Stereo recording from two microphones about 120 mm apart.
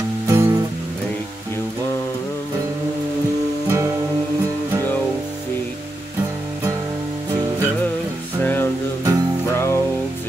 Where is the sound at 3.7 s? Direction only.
20° right (ahead or behind).